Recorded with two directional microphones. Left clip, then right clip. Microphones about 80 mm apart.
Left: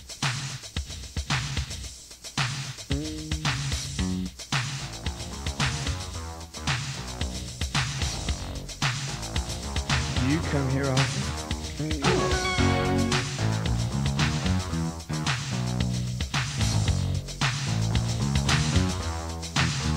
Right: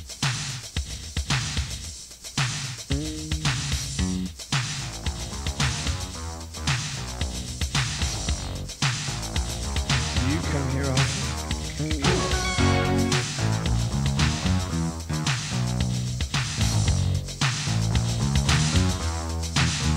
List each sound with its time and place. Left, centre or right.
0.2 s music: left
2.3 s music: left